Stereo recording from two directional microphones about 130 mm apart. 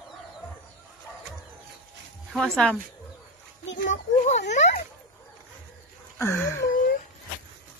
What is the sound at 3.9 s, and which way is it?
Speech, 65° left (ahead or behind).